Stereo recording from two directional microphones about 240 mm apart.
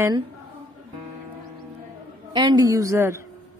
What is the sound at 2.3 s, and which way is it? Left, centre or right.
Speech, centre.